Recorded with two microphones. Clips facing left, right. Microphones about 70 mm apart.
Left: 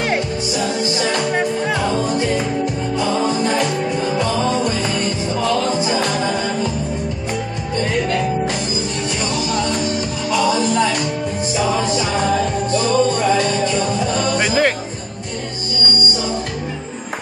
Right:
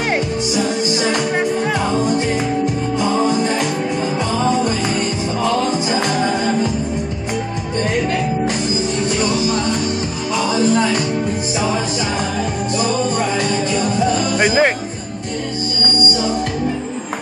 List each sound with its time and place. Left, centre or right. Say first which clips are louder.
1.3 s music: right 1 dB; centre
12.7 s music: left 2 dB; centre